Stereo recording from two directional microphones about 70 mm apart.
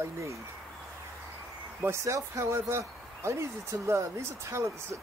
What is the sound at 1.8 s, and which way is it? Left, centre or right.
Speech, right.